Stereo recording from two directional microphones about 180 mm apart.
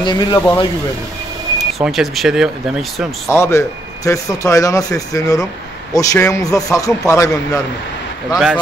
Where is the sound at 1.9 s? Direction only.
Centre (ahead or behind).